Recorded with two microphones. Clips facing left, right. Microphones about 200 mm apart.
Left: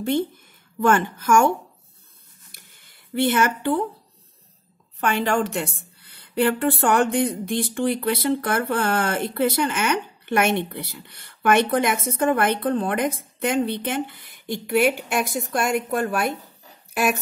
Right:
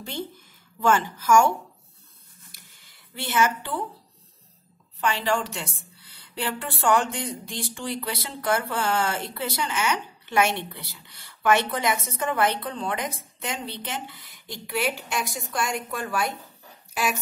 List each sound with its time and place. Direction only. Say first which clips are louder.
0.7 s a woman's voice: left 3 dB; 55° left (ahead or behind)
2.5 s a sound: left 2 dB; 55° left (ahead or behind)
5.0 s a woman's voice: left 4 dB; 55° left (ahead or behind)